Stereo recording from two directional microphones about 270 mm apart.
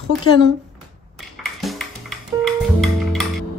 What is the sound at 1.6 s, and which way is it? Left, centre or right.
Music, centre.